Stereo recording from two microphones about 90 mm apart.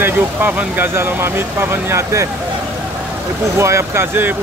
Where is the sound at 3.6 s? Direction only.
30° right (ahead or behind).